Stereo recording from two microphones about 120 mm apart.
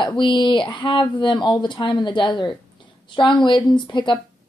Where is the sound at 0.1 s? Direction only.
40° left (ahead or behind).